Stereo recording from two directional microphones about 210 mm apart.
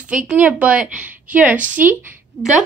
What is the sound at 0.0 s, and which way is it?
A woman's voice, 5° right (ahead or behind).